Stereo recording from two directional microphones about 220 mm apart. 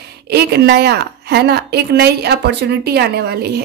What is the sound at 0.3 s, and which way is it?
A woman's voice, 50° right (ahead or behind).